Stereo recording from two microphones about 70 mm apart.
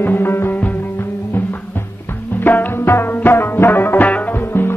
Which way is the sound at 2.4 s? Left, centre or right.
Left.